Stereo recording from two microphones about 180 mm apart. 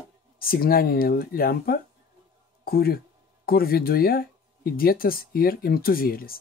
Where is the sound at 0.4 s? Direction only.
55° left (ahead or behind).